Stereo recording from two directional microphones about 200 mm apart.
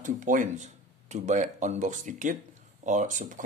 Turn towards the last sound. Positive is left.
turn(degrees=-40)  # may be behind; listen again after turning